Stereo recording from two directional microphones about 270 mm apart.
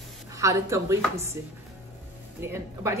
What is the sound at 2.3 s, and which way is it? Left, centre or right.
Speech, centre.